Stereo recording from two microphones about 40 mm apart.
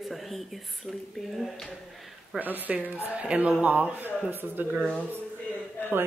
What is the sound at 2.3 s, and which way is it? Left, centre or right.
Speech, right.